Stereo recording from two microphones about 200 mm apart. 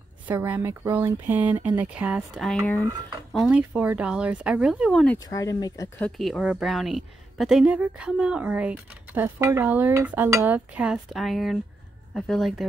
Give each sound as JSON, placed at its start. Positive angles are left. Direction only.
{"t": 0.3, "sound": "a woman's voice", "side_deg": -10}
{"t": 2.6, "sound": "speech", "side_deg": 10}
{"t": 3.3, "sound": "a woman's voice", "side_deg": -5}
{"t": 5.0, "sound": "speech", "side_deg": 10}
{"t": 6.0, "sound": "a woman's voice", "side_deg": 0}